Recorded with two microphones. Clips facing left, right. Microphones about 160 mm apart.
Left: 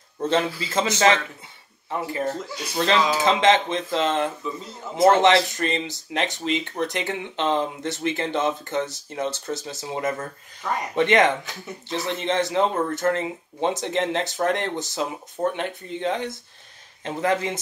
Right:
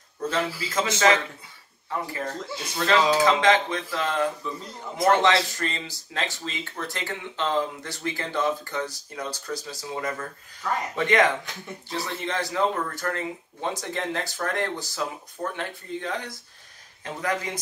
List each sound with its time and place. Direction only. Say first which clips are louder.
0.2 s a man's voice: left 4 dB; 25° left (ahead or behind)